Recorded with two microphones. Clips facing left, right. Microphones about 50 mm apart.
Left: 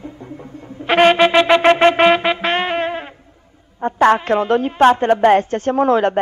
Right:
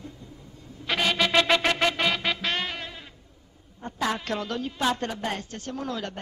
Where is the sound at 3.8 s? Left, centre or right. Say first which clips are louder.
Left 15 dB; left.